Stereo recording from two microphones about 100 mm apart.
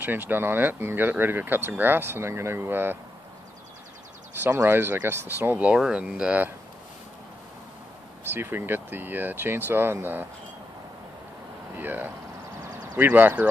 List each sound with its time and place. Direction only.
0.0 s speech: 20° right (ahead or behind)
4.3 s speech: 20° right (ahead or behind)
8.3 s speech: 20° right (ahead or behind)
11.8 s speech: 20° right (ahead or behind)